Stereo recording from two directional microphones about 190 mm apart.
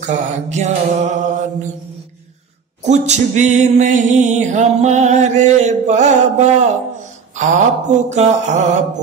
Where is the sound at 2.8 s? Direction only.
35° right (ahead or behind).